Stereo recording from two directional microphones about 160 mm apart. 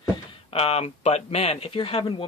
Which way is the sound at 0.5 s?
40° left (ahead or behind).